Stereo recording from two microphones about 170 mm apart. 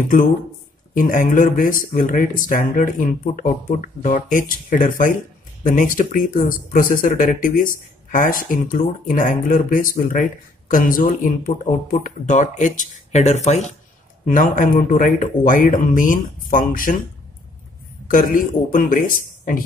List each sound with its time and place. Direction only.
0.9 s speech: 50° left (ahead or behind)
18.0 s speech: 50° left (ahead or behind)